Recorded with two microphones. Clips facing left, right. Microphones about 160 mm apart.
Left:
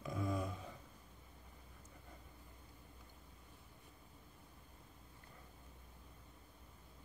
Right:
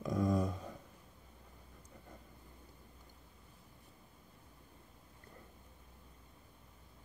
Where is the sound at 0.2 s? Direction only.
40° right (ahead or behind).